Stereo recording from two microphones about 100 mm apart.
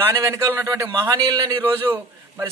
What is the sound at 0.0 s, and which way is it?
A man's voice, 30° right (ahead or behind).